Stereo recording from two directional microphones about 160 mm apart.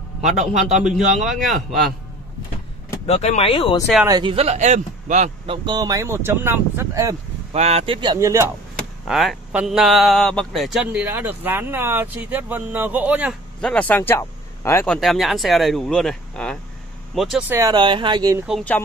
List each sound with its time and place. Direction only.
0.4 s a man's voice: 50° right (ahead or behind)
0.7 s speech: 5° right (ahead or behind)
3.1 s speech: 40° left (ahead or behind)
4.2 s a man's voice: 35° right (ahead or behind)
5.5 s speech: 25° right (ahead or behind)
7.5 s speech: 40° right (ahead or behind); by 8.5 s 20° right (ahead or behind)
9.0 s speech: centre (ahead or behind)
13.6 s speech: 5° left (ahead or behind)
14.9 s speech: centre (ahead or behind)
17.5 s speech: 20° right (ahead or behind)
18.5 s speech: 10° left (ahead or behind)